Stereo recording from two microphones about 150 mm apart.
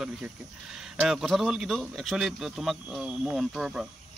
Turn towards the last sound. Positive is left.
turn(degrees=-5)  # may be behind; listen again after turning